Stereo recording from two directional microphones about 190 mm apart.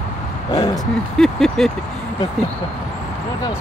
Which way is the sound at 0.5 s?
20° left (ahead or behind).